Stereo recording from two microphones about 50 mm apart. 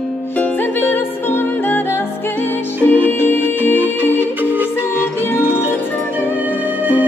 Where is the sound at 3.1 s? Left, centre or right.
Left.